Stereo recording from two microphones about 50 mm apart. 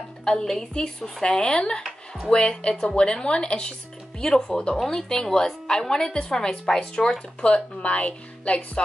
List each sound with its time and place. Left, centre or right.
0.2 s a woman's voice: centre
7.4 s speech: left